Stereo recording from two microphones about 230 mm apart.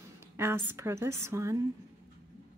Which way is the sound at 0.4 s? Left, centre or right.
Centre.